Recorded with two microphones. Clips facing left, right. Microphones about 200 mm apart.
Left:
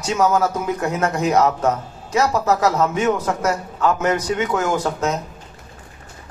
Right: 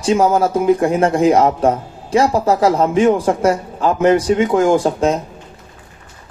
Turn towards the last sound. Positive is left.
turn(degrees=-30)  # may be behind; listen again after turning